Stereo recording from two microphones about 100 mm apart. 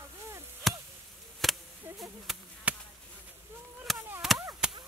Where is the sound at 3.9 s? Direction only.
Centre (ahead or behind).